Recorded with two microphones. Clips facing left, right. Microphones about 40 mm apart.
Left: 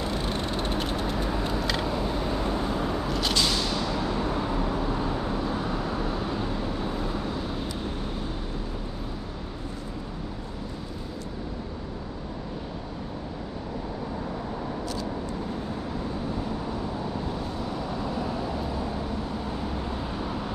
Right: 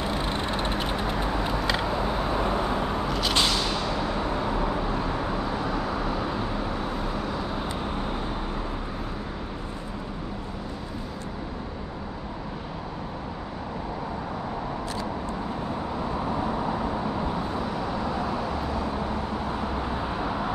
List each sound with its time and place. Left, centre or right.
0.0 s vehicle: right
3.1 s a sound: centre
5.7 s vehicle: centre
7.2 s vehicle: centre
16.3 s vehicle: right